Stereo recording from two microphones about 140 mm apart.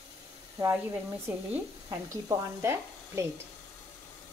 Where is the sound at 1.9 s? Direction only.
20° right (ahead or behind).